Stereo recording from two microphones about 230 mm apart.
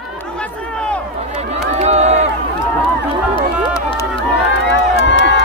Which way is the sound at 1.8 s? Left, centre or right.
Right.